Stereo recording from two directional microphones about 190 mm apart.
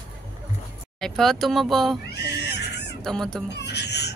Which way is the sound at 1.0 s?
Centre (ahead or behind).